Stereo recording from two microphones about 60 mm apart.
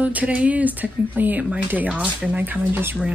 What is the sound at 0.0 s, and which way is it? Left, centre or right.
A woman's voice, right.